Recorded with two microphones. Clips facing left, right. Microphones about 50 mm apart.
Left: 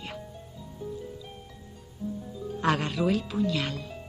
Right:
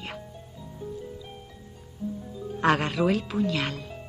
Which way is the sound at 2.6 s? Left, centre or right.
Right.